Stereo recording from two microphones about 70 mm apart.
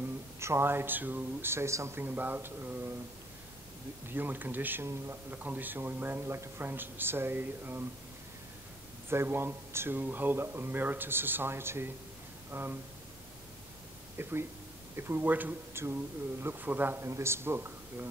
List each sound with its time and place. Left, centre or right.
0.4 s speech: right
2.0 s speech: right
4.1 s speech: right
4.8 s speech: right
5.3 s speech: right
9.1 s speech: right
14.2 s speech: right